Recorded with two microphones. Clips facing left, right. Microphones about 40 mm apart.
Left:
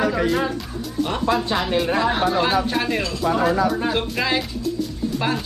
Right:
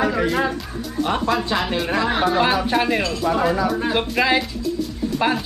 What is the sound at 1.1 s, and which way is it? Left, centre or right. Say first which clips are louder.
Speech: right 4 dB; centre.